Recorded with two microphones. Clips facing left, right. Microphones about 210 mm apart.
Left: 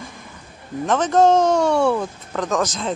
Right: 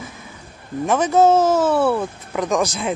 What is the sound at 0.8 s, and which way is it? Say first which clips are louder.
Speech: right 1 dB; 10° right (ahead or behind).